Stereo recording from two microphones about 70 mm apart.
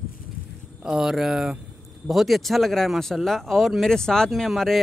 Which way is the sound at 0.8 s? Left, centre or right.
Centre.